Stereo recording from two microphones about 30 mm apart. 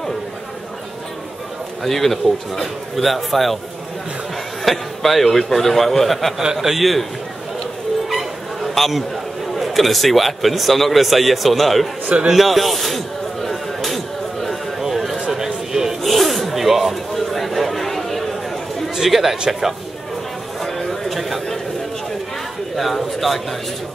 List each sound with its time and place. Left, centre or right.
1.8 s a man's voice: centre
4.6 s a man's voice: centre
6.5 s a man's voice: centre
6.8 s a man's voice: centre
8.1 s chatter: centre
9.6 s a man's voice: centre
12.4 s a sound: centre
16.0 s snake: centre
16.5 s music: centre
16.9 s chatter: centre
18.9 s speech: centre
20.6 s a sound: centre
21.1 s a sound: centre
22.8 s a sound: centre